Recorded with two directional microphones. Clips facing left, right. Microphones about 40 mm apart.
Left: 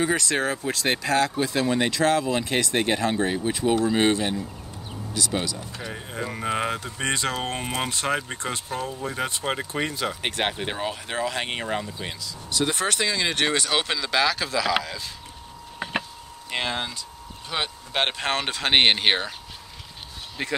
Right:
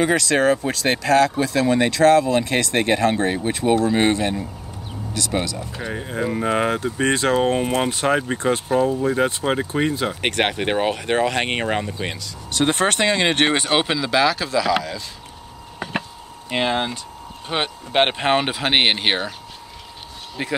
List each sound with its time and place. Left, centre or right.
0.0 s speech: right
0.5 s speech: right
5.3 s speech: right
5.9 s speech: centre
7.6 s speech: centre
7.9 s speech: centre
9.4 s speech: centre
10.2 s speech: right
13.8 s speech: centre
15.8 s a sound: centre
16.4 s speech: centre
20.4 s speech: centre